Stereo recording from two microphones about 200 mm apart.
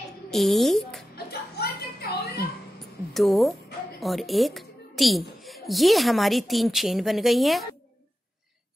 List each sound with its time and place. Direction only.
0.3 s a woman's voice: centre (ahead or behind)
1.1 s a sound: 50° left (ahead or behind)
3.1 s speech: centre (ahead or behind)